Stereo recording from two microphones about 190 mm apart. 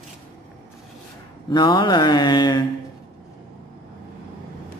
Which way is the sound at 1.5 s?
25° left (ahead or behind).